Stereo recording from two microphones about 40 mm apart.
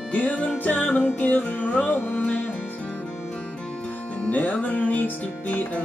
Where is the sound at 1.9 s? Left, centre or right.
Left.